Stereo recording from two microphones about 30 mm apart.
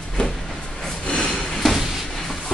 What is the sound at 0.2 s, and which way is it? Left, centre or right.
Vehicle, left.